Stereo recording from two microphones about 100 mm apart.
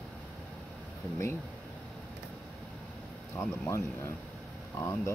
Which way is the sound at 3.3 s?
20° left (ahead or behind).